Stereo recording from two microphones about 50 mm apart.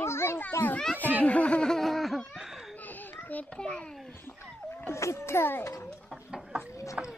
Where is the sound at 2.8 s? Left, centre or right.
Left.